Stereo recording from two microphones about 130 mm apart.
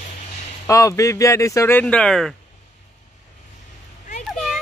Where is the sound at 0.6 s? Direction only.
25° left (ahead or behind); by 2.3 s 5° left (ahead or behind).